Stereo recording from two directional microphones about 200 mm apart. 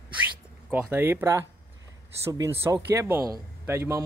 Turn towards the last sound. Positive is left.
turn(degrees=-15)  # may be behind; listen again after turning